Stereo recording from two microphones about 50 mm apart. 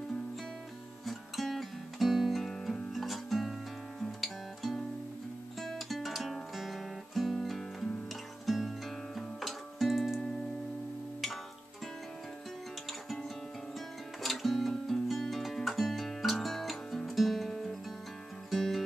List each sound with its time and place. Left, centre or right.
1.0 s music: centre
4.0 s guitar: centre
5.6 s music: centre
13.7 s music: centre